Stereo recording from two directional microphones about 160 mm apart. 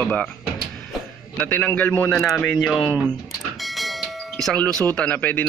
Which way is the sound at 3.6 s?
Centre (ahead or behind).